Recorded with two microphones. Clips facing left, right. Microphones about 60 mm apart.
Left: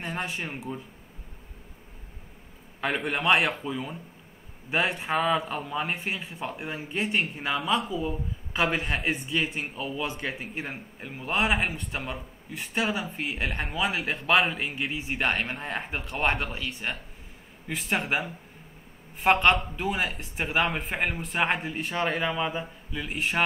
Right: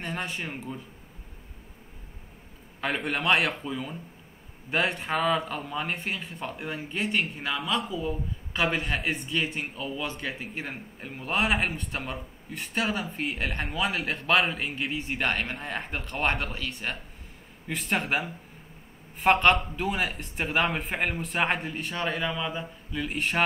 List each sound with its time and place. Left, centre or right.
0.0 s speech: centre
2.8 s speech: centre
10.1 s speech: centre